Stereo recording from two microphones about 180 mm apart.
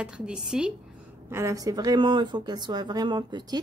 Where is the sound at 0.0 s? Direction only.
5° right (ahead or behind).